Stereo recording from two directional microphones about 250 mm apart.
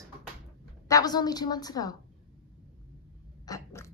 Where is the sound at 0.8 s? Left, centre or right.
Centre.